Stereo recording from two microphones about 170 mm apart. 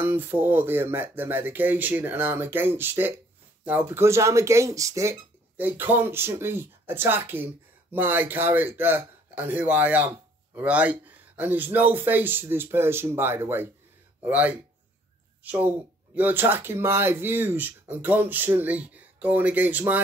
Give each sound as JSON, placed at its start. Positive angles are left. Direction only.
{"t": 0.0, "sound": "speech", "side_deg": -10}